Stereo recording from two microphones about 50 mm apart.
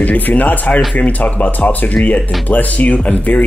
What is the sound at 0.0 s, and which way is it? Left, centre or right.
Speech, left.